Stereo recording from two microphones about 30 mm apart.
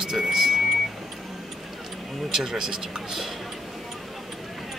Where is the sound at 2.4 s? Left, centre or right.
Right.